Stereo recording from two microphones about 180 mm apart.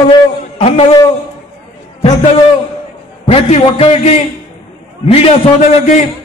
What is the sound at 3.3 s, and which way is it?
A man's voice, 30° left (ahead or behind).